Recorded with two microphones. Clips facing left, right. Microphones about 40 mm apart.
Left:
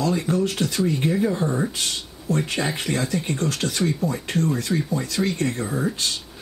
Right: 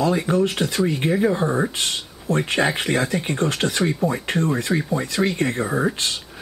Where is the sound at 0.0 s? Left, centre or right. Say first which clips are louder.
Right 3 dB; centre.